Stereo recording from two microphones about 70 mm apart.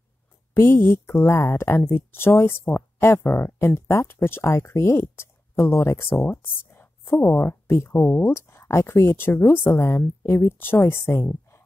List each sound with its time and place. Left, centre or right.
0.6 s speech: left